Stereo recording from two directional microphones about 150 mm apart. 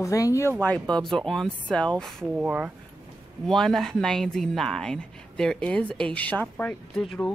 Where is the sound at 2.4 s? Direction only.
10° right (ahead or behind).